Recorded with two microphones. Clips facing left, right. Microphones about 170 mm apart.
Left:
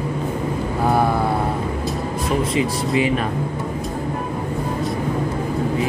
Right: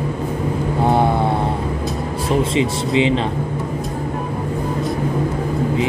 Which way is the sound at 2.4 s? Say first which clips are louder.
Right 3 dB; 25° right (ahead or behind).